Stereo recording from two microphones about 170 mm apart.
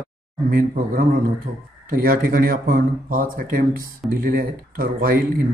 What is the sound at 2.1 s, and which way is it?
Speech, 60° right (ahead or behind).